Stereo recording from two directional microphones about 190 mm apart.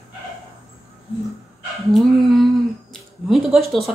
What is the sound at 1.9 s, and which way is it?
Humming, centre (ahead or behind).